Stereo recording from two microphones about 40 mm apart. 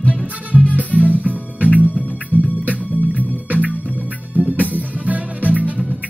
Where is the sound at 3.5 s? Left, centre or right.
Right.